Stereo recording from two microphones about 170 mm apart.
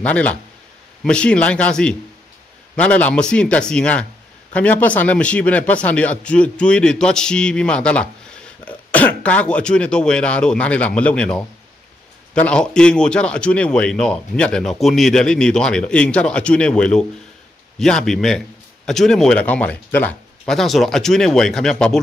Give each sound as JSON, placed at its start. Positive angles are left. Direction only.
{"t": 0.0, "sound": "speech", "side_deg": 10}